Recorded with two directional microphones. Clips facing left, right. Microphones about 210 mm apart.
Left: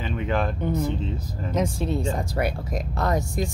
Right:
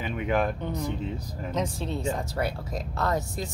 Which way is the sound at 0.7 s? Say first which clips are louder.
Left 4 dB; 15° right (ahead or behind).